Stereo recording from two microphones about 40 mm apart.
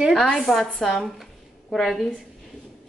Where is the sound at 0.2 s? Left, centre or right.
Centre.